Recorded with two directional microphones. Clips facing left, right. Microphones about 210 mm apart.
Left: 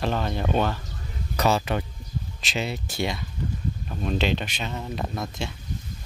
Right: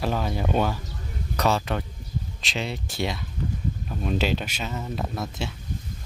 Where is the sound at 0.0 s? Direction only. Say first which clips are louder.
Even; 5° right (ahead or behind).